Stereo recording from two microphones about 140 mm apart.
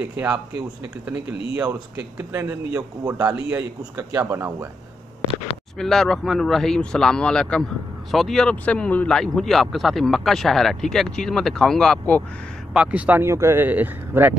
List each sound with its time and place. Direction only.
0.0 s a man's voice: 10° right (ahead or behind)
1.6 s a man's voice: 15° right (ahead or behind)
5.8 s speech: 5° left (ahead or behind)
12.7 s a man's voice: 10° right (ahead or behind)